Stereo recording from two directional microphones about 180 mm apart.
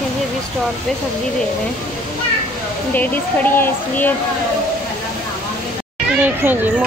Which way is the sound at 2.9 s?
10° left (ahead or behind).